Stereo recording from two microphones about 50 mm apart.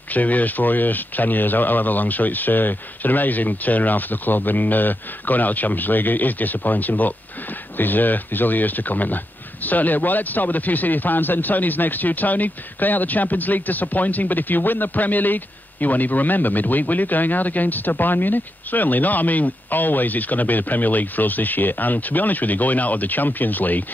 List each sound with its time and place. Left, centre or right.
0.1 s speech: left